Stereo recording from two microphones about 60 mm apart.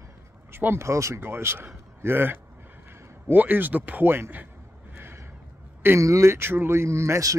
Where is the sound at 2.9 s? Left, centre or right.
Right.